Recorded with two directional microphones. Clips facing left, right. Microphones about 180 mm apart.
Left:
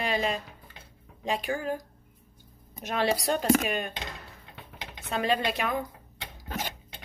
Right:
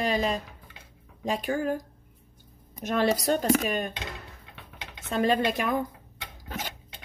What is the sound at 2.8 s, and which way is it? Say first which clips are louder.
A woman's voice: right 3 dB; 45° right (ahead or behind).